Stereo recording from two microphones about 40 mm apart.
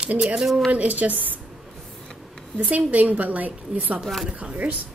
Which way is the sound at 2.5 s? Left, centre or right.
Right.